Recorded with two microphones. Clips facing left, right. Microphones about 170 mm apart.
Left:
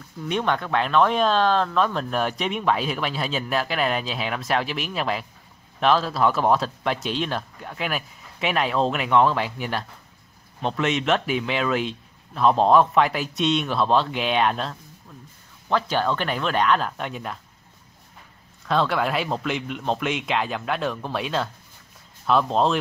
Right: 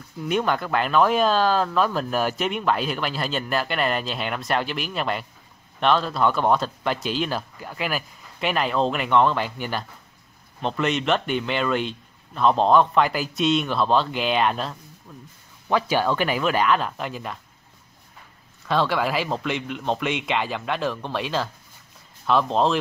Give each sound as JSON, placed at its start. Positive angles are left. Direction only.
{"t": 0.2, "sound": "speech", "side_deg": -5}
{"t": 18.7, "sound": "speech", "side_deg": 0}